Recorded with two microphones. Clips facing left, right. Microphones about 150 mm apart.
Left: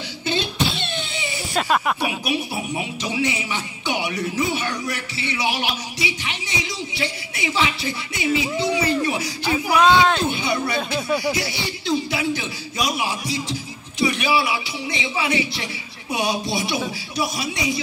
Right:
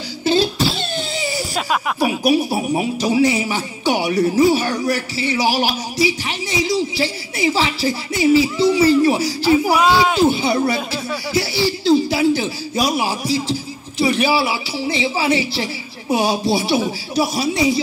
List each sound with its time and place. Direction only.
0.2 s a sound: 35° right (ahead or behind)
1.5 s speech: 5° right (ahead or behind)
2.0 s speech: 35° right (ahead or behind)
9.8 s speech: 5° right (ahead or behind)
10.2 s speech: 35° right (ahead or behind)